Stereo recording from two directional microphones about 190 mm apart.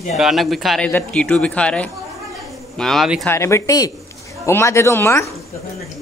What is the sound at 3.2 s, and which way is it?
Speech, 15° left (ahead or behind).